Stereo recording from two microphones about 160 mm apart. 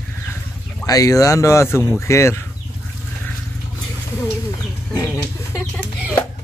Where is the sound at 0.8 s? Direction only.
20° left (ahead or behind).